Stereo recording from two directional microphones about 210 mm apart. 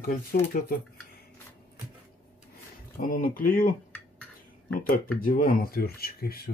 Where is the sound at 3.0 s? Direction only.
40° left (ahead or behind).